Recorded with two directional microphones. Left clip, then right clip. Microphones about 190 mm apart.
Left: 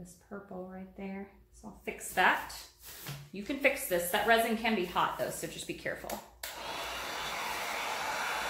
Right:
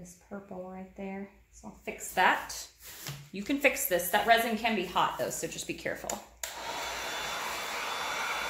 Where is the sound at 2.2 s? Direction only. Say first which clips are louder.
Right 2 dB; 25° right (ahead or behind).